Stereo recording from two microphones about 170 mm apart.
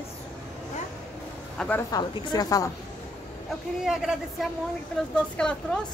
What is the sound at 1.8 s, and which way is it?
Speech, 20° left (ahead or behind).